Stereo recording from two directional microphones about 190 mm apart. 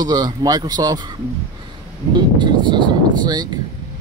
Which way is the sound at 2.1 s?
25° right (ahead or behind).